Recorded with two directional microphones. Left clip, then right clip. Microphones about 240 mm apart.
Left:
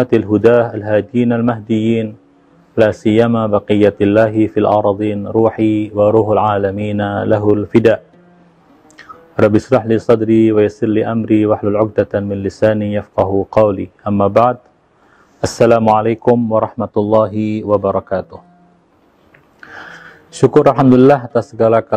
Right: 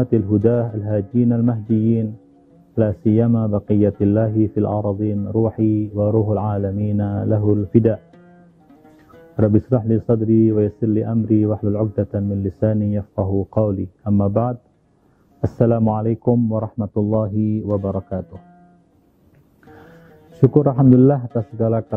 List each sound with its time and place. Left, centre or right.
0.0 s speech: centre
4.6 s speech: left
4.9 s speech: centre
5.2 s speech: left
5.5 s speech: centre
9.4 s speech: centre
13.2 s speech: left
13.6 s speech: centre
16.9 s speech: left
17.2 s speech: centre
17.6 s speech: left
19.7 s music: centre
20.7 s speech: centre